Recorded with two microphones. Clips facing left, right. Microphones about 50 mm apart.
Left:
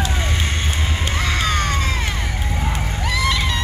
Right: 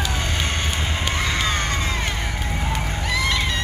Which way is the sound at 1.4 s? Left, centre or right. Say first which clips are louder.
Left 2 dB; right.